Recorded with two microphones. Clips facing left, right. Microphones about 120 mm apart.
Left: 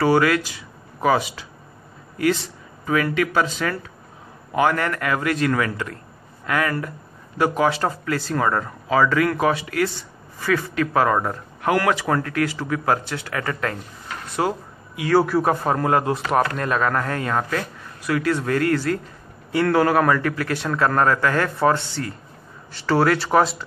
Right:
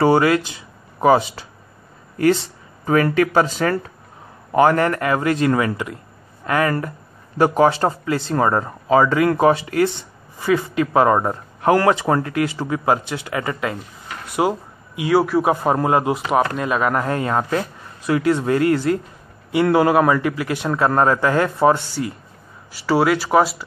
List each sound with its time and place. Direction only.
0.0 s speech: 25° right (ahead or behind)
4.6 s a man's voice: 30° right (ahead or behind); by 14.5 s 15° right (ahead or behind)
15.1 s speech: 5° right (ahead or behind)
15.5 s a man's voice: 20° right (ahead or behind); by 23.6 s 5° right (ahead or behind)